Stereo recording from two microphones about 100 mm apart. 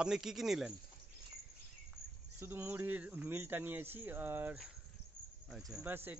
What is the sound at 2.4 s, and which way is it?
Speech, 20° right (ahead or behind).